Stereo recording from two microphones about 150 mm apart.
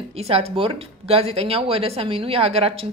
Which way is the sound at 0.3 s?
40° right (ahead or behind).